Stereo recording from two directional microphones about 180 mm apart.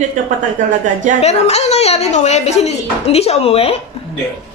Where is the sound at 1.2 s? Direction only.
35° left (ahead or behind).